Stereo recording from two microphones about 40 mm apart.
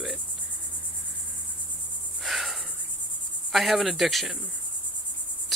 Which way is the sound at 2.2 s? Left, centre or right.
Centre.